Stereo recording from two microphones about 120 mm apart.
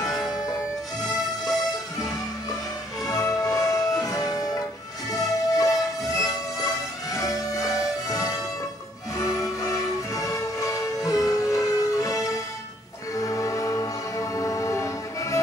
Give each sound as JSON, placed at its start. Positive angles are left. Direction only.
{"t": 0.0, "sound": "music", "side_deg": 0}
{"t": 3.1, "sound": "music", "side_deg": 30}